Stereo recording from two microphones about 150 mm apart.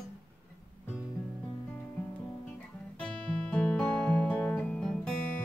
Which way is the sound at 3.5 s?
5° left (ahead or behind).